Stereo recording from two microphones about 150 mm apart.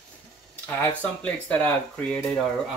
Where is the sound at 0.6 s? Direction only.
10° left (ahead or behind).